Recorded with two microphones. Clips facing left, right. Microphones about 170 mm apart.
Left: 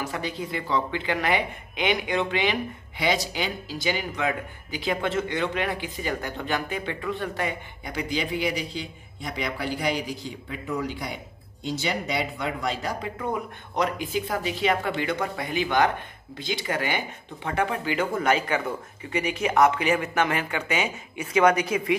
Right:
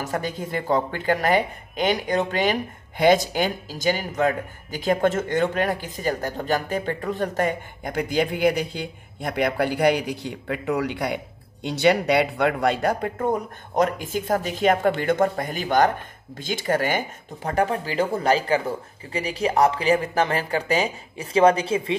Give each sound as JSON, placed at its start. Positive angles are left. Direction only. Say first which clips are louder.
{"t": 0.0, "sound": "speech", "louder": "right 3 dB", "side_deg": -45}